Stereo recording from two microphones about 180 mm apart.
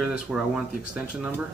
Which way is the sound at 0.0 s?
5° right (ahead or behind).